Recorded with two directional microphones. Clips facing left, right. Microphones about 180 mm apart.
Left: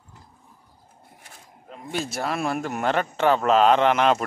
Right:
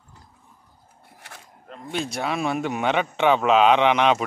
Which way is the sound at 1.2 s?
70° right (ahead or behind).